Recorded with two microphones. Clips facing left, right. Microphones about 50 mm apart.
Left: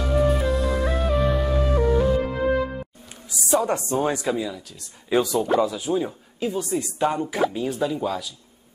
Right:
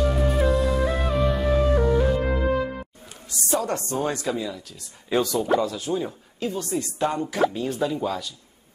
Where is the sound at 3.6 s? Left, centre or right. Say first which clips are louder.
Left 3 dB; centre.